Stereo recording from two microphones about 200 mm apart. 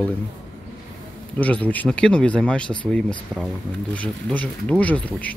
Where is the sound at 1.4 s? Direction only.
5° left (ahead or behind).